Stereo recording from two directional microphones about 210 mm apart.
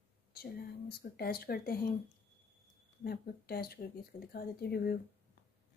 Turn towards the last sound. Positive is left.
turn(degrees=50)  # may be behind; listen again after turning